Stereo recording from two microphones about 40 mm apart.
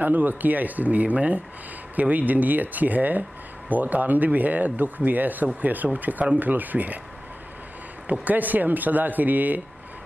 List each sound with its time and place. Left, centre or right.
0.0 s speech: right
8.1 s speech: right